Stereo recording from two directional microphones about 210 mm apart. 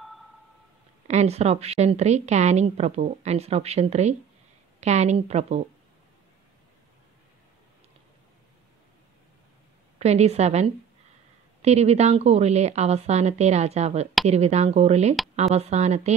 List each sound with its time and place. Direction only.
1.0 s a woman's voice: 30° right (ahead or behind)
9.9 s a woman's voice: 30° right (ahead or behind)